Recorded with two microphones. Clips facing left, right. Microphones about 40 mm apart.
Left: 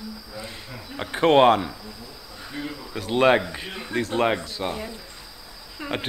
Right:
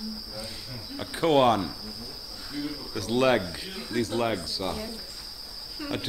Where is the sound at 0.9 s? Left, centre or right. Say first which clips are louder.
Left 5 dB; left.